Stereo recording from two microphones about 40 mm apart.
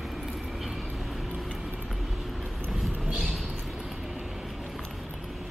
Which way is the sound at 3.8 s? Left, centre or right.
Centre.